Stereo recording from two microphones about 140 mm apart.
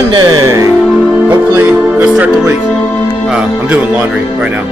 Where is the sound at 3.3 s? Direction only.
10° right (ahead or behind).